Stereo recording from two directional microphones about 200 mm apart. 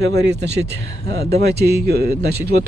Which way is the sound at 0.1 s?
55° right (ahead or behind).